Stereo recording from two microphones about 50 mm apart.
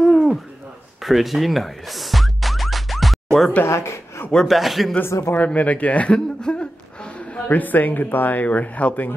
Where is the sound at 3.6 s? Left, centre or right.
Left.